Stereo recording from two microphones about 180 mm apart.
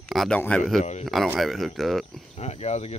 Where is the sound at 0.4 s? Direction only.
5° left (ahead or behind).